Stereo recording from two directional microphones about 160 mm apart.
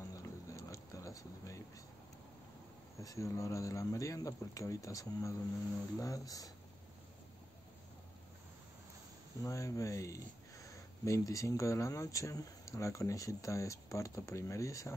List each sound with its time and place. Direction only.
0.1 s a sound: 20° left (ahead or behind)
3.0 s speech: 20° left (ahead or behind)
9.4 s speech: 20° left (ahead or behind)